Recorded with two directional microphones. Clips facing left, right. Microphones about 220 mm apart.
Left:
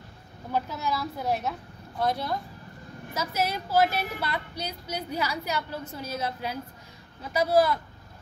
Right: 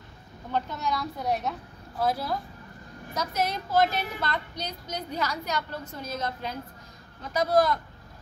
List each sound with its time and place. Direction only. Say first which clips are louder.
0.5 s a woman's voice: even; 5° left (ahead or behind)